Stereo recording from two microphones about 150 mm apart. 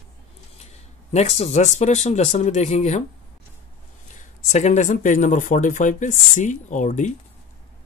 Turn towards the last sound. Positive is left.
turn(degrees=55)  # may be behind; listen again after turning